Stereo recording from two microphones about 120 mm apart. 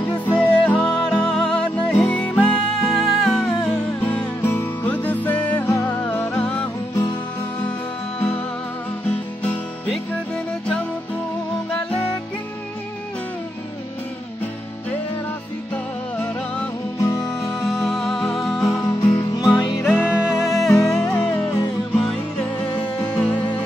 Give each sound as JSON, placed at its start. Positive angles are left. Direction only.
{"t": 0.2, "sound": "music", "side_deg": 10}
{"t": 9.8, "sound": "music", "side_deg": 5}
{"t": 15.7, "sound": "music", "side_deg": 10}
{"t": 17.0, "sound": "music", "side_deg": 25}
{"t": 17.5, "sound": "music", "side_deg": 5}
{"t": 18.6, "sound": "music", "side_deg": 25}
{"t": 20.1, "sound": "music", "side_deg": -5}
{"t": 20.6, "sound": "music", "side_deg": 25}
{"t": 21.0, "sound": "music", "side_deg": 10}